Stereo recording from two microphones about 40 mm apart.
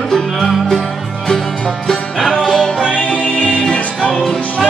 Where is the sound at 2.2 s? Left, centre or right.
Left.